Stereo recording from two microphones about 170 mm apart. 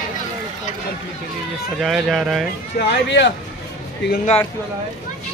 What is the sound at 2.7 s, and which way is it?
Speech, 90° left.